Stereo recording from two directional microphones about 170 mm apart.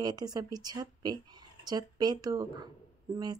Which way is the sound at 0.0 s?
25° right (ahead or behind).